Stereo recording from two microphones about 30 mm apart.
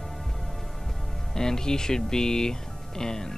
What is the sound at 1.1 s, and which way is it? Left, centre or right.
Speech, centre.